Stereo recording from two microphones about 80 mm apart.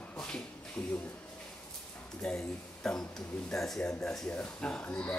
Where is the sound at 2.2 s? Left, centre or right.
Centre.